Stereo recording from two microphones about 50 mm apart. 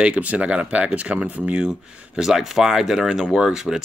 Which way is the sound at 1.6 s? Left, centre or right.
Centre.